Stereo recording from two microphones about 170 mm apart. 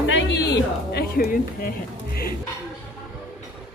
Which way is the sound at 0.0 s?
90° left.